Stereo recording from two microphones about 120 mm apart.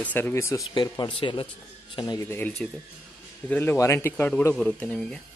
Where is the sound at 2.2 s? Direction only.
20° left (ahead or behind).